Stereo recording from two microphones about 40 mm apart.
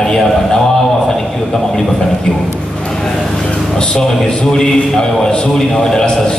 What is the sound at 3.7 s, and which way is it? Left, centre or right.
Speech, left.